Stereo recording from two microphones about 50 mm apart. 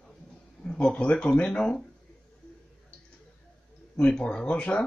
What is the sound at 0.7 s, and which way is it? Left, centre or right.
Speech, centre.